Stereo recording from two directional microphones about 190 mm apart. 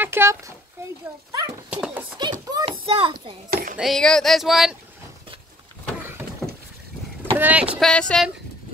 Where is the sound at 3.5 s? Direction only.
45° right (ahead or behind).